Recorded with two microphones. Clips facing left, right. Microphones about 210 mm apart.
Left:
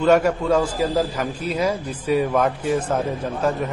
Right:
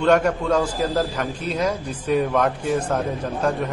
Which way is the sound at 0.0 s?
5° left (ahead or behind).